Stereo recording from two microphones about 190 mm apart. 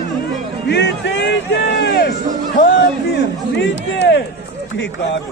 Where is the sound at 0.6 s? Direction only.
65° left (ahead or behind).